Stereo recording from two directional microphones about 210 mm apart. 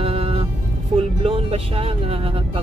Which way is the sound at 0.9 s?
25° right (ahead or behind).